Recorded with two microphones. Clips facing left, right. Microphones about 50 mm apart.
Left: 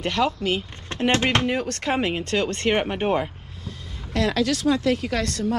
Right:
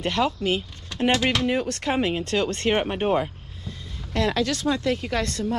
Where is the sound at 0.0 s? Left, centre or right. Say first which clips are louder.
Left 1 dB; left.